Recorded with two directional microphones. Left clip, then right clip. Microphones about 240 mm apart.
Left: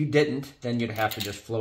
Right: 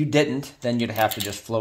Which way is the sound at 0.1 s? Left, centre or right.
Right.